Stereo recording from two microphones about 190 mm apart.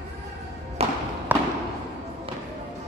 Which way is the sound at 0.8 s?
30° right (ahead or behind).